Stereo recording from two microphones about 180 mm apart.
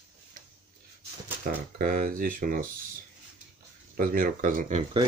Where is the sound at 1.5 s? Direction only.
50° right (ahead or behind).